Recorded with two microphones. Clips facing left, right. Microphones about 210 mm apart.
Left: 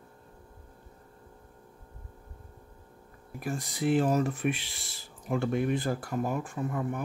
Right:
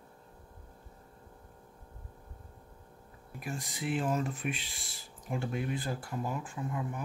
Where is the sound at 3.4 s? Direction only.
40° left (ahead or behind).